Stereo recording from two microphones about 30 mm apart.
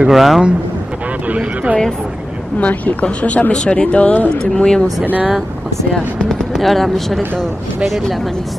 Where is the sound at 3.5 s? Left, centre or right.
Left.